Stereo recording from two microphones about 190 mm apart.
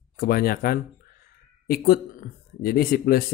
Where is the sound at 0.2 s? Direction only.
55° left (ahead or behind).